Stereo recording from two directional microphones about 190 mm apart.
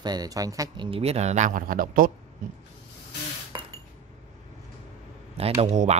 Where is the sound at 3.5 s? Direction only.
25° right (ahead or behind).